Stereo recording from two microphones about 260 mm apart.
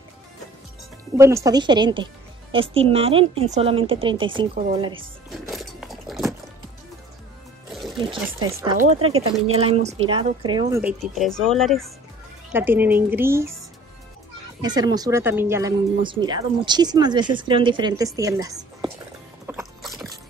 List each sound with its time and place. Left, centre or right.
1.1 s speech: centre
5.3 s music: centre
8.4 s speech: centre
8.7 s speech: right
10.8 s speech: centre
14.6 s speech: centre
19.4 s a sound: centre